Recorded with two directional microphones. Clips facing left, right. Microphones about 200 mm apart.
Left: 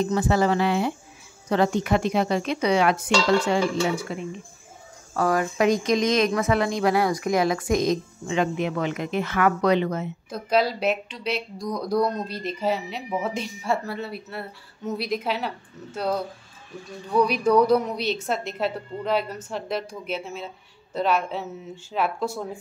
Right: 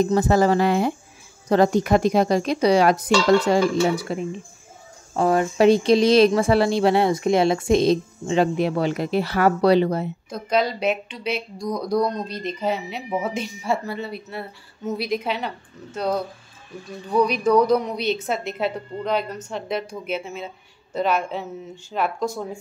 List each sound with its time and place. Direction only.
0.0 s speech: 40° right (ahead or behind)
10.3 s a woman's voice: 5° left (ahead or behind)
17.2 s a woman's voice: 5° left (ahead or behind)